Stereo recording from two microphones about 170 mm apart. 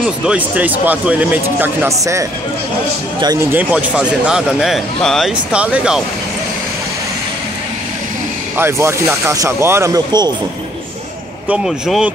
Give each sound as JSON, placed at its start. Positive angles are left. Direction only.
{"t": 0.0, "sound": "speech", "side_deg": -5}
{"t": 3.5, "sound": "speech", "side_deg": -5}
{"t": 8.5, "sound": "speech", "side_deg": -15}
{"t": 11.4, "sound": "speech", "side_deg": -5}